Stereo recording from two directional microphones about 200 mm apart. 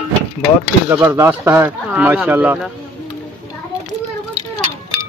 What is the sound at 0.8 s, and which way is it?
Speech, 10° right (ahead or behind).